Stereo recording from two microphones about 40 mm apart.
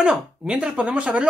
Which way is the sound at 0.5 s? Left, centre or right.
Right.